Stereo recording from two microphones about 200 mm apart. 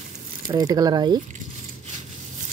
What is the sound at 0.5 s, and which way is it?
Speech, 20° right (ahead or behind).